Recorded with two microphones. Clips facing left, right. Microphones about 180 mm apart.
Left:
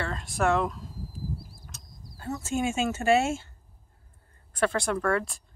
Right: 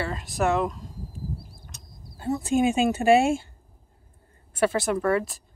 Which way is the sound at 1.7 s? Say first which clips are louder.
Right 1 dB; centre (ahead or behind).